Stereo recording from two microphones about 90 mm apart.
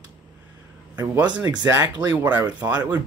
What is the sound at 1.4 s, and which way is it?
Speech, 45° right (ahead or behind).